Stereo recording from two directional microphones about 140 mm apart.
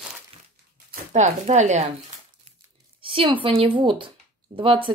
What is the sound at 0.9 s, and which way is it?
Speech, 55° right (ahead or behind).